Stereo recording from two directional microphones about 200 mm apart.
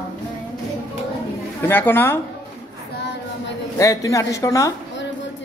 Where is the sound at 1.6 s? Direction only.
10° left (ahead or behind).